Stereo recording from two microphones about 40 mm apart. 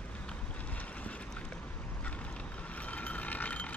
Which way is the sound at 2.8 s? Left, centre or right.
Left.